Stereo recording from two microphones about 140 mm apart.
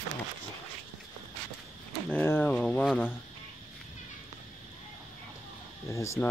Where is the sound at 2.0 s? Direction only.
15° left (ahead or behind).